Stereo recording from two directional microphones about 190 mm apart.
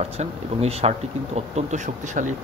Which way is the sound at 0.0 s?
35° right (ahead or behind).